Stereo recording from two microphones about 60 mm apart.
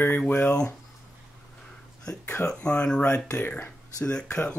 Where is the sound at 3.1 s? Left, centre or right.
Left.